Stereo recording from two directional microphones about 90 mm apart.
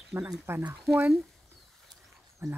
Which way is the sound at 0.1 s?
20° right (ahead or behind).